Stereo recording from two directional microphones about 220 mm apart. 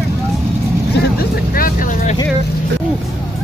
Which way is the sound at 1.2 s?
40° left (ahead or behind).